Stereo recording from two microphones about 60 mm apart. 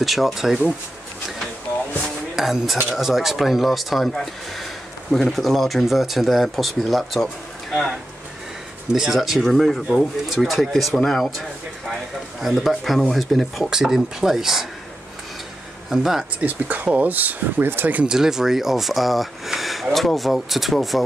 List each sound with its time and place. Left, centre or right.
0.0 s speech: centre
2.3 s speech: centre
8.9 s speech: centre
13.7 s speech: centre
15.9 s speech: centre
16.3 s speech: right
18.0 s speech: centre